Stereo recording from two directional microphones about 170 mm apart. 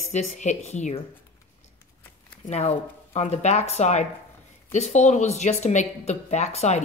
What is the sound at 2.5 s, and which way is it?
Speech, 40° left (ahead or behind).